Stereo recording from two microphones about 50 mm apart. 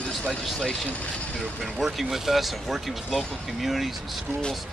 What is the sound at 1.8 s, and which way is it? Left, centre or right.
A man's voice, centre.